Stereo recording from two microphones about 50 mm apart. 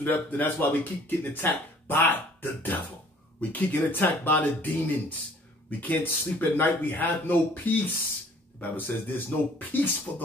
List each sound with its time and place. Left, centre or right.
0.0 s speech: left